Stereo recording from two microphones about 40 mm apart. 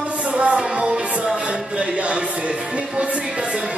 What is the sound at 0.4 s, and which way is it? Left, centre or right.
Music, right.